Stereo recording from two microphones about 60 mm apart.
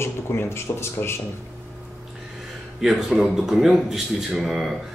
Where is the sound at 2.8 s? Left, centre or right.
Centre.